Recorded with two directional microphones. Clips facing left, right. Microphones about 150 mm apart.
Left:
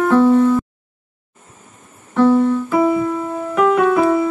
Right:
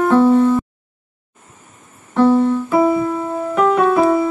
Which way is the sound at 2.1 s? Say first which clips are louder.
Even; 30° right (ahead or behind).